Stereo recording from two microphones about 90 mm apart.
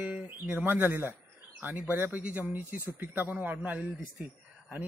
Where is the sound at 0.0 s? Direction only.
15° right (ahead or behind).